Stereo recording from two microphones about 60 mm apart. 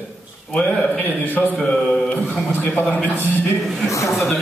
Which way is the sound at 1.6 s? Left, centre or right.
Centre.